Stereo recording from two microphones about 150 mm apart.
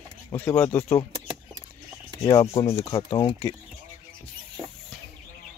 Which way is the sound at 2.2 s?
30° left (ahead or behind).